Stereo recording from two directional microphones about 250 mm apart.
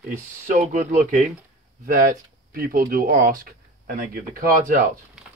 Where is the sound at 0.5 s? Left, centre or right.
Right.